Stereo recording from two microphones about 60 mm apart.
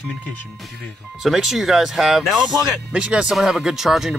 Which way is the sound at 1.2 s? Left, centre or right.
Centre.